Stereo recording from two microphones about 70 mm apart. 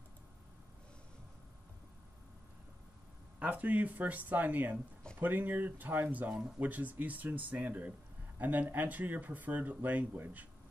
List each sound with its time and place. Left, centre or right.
3.3 s speech: right